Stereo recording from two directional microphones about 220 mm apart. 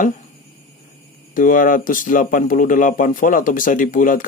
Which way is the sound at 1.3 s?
40° left (ahead or behind).